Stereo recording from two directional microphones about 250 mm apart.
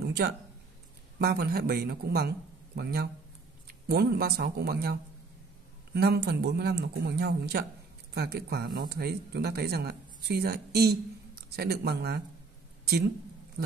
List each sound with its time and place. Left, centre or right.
0.0 s a sound: right
1.2 s speech: right
5.9 s speech: right